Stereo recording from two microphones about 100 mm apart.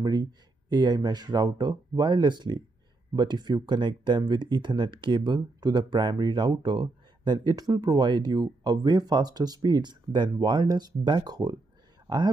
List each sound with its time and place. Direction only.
0.0 s speech: 45° right (ahead or behind)